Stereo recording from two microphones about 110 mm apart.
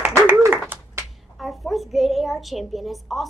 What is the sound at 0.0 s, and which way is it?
Clapping, 20° right (ahead or behind).